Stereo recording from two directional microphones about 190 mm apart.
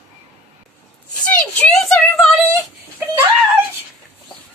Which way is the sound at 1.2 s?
5° left (ahead or behind).